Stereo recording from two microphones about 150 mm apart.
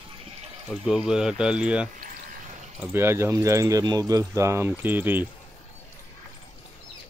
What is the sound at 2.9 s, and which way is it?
Speech, 15° right (ahead or behind).